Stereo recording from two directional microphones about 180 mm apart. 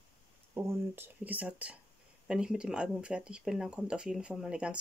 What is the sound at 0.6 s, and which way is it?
Speech, 10° right (ahead or behind).